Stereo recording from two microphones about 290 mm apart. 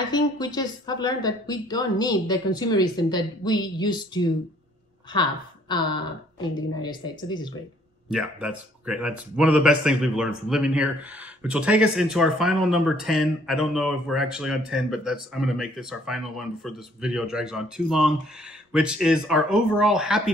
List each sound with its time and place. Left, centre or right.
0.1 s a woman's voice: centre
8.1 s speech: centre